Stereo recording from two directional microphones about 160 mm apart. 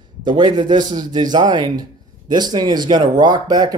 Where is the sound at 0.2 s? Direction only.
30° right (ahead or behind).